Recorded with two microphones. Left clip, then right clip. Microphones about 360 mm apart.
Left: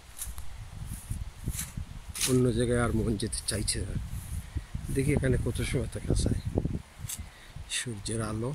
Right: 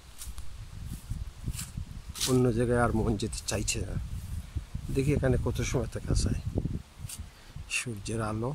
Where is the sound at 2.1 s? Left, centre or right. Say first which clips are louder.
Even; centre.